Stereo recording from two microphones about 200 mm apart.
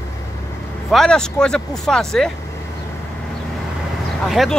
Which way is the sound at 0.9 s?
Centre (ahead or behind).